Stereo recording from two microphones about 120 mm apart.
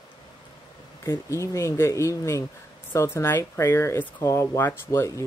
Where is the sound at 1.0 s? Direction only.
25° left (ahead or behind).